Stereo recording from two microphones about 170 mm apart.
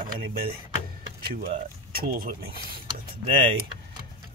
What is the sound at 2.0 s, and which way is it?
Speech, 60° right (ahead or behind).